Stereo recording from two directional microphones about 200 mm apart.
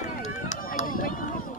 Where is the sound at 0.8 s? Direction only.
45° left (ahead or behind).